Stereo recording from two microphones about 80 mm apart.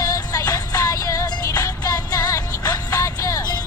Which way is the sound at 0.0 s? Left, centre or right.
Left.